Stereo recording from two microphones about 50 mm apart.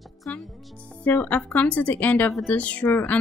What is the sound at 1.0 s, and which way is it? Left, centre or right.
A woman's voice, left.